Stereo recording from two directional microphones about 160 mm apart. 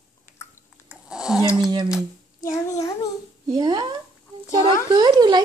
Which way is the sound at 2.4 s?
20° left (ahead or behind).